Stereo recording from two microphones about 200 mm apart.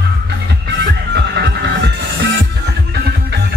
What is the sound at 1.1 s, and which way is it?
Music, 55° right (ahead or behind).